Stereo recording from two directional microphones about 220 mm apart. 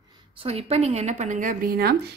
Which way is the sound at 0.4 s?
25° right (ahead or behind).